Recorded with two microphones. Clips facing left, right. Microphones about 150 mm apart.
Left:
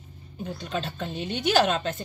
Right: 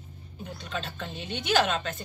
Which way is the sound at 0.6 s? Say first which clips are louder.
Left 4 dB; 40° left (ahead or behind).